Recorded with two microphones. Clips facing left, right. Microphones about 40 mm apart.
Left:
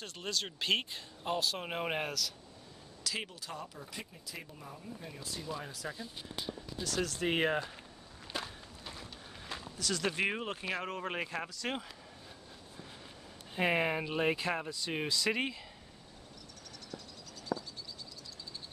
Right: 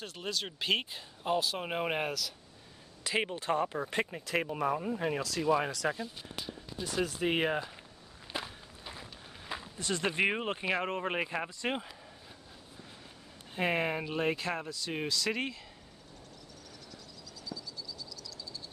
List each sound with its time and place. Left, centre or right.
0.0 s speech: centre
3.0 s speech: right
6.8 s speech: centre
7.2 s speech: centre
8.3 s walk: centre
9.8 s speech: right
13.6 s speech: centre
16.9 s a sound: left